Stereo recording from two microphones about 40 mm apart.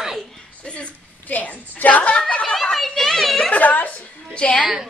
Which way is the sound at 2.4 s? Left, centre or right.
Centre.